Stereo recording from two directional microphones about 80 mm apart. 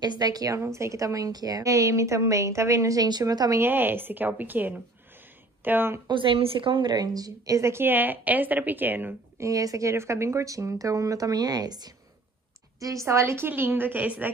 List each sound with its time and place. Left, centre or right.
0.0 s a woman's voice: right
3.1 s a woman's voice: right
3.6 s a woman's voice: right
6.0 s a woman's voice: right
9.4 s a woman's voice: right
12.7 s a woman's voice: right; by 14.3 s centre